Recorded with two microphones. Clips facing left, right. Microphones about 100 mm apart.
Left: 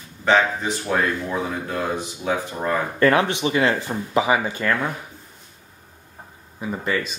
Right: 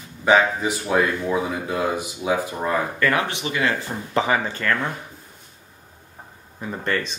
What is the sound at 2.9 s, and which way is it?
Speech, 25° left (ahead or behind).